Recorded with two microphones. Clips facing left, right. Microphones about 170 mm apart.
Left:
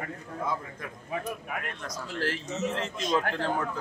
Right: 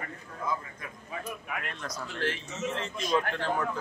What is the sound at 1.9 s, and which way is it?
Speech, 40° left (ahead or behind).